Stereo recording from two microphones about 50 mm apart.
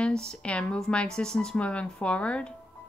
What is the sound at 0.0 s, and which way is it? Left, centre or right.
A woman's voice, centre.